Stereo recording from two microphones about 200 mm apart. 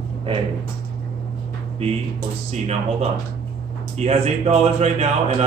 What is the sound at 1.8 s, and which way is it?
A man's voice, 30° right (ahead or behind).